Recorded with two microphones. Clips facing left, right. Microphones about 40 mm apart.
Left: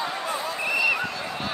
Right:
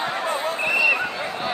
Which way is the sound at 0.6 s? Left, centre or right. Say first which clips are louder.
Right 4 dB; right.